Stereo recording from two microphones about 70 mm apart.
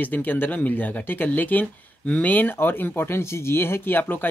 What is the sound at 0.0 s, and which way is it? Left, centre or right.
Speech, left.